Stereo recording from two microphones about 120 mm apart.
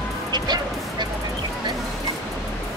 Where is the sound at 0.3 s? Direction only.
35° right (ahead or behind).